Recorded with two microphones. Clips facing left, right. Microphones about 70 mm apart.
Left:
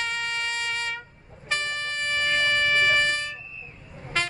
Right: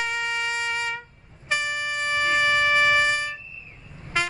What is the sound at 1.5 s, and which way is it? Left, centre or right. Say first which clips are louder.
Wind instrument: right 3 dB; centre.